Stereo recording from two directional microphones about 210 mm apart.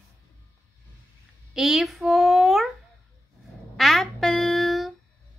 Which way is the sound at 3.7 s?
Centre (ahead or behind).